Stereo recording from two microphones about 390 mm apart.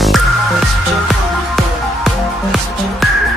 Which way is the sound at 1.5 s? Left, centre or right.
Centre.